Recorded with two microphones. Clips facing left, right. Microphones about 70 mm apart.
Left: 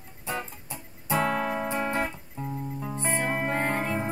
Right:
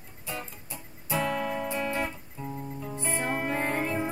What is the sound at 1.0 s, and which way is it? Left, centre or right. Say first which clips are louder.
Music: left 3 dB; left.